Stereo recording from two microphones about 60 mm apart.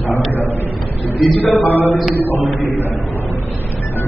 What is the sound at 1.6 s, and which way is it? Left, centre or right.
Speech, left.